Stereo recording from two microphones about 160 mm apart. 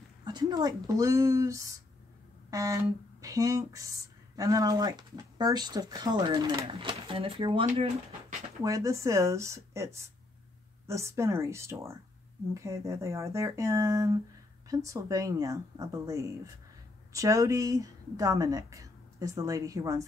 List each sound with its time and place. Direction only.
0.2 s speech: 25° right (ahead or behind)
8.6 s speech: 20° right (ahead or behind)